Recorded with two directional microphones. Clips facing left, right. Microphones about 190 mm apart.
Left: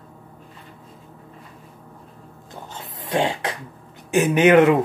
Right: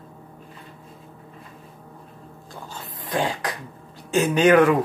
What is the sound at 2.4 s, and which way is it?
Throat clearing, 20° left (ahead or behind).